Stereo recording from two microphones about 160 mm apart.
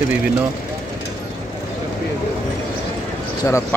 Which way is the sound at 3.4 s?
20° left (ahead or behind).